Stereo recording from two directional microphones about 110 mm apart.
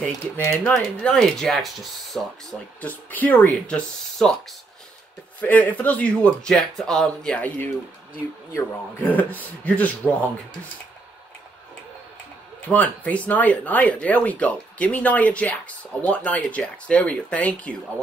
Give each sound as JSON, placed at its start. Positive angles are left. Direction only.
{"t": 0.0, "sound": "speech", "side_deg": 20}
{"t": 1.0, "sound": "speech", "side_deg": 5}
{"t": 2.8, "sound": "speech", "side_deg": 15}
{"t": 8.9, "sound": "speech", "side_deg": 15}
{"t": 12.6, "sound": "speech", "side_deg": 15}